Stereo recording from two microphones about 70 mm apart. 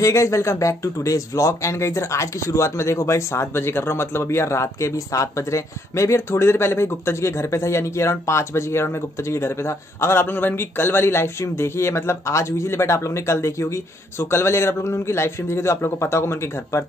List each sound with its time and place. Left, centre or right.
0.0 s a man's voice: left